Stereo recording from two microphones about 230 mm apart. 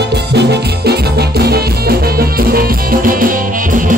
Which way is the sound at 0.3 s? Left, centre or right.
Right.